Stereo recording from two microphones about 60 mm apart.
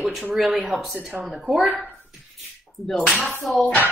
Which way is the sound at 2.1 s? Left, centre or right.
Centre.